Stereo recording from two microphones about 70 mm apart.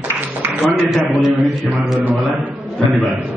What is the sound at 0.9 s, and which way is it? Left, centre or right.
A man's voice, centre.